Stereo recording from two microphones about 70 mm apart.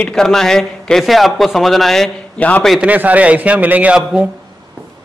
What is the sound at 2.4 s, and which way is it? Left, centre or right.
Speech, centre.